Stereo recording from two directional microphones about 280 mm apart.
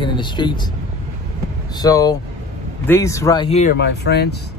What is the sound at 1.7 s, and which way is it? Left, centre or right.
Speech, centre.